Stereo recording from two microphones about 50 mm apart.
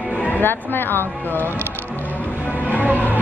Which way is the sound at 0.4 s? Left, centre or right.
Left.